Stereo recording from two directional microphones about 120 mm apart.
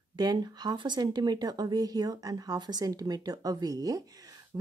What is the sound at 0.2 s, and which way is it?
Speech, 35° right (ahead or behind).